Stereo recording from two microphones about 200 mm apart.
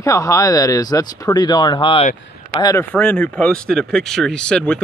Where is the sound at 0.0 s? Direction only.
15° left (ahead or behind).